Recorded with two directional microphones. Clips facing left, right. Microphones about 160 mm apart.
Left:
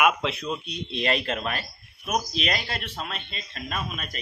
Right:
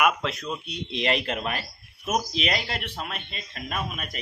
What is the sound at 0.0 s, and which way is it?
Speech, centre (ahead or behind).